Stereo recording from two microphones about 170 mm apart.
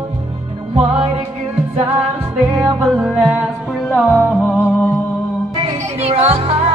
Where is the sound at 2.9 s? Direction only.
5° right (ahead or behind).